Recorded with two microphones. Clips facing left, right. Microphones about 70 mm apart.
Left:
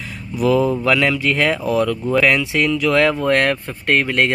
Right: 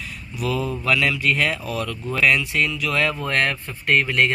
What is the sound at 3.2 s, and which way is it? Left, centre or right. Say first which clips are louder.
Speech: left 6 dB; left.